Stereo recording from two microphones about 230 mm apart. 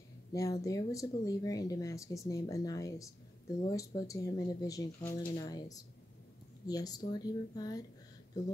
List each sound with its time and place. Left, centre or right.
0.3 s speech: centre